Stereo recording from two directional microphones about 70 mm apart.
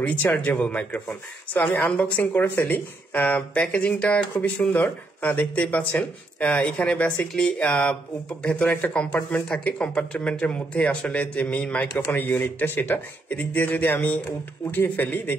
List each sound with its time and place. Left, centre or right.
0.0 s speech: left